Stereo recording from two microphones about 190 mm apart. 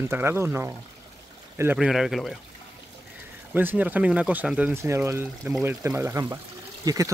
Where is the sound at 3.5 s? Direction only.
10° right (ahead or behind).